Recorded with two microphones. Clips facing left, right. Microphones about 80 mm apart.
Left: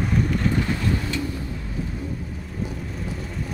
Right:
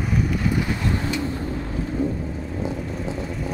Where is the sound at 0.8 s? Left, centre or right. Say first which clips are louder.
Right 1 dB; right.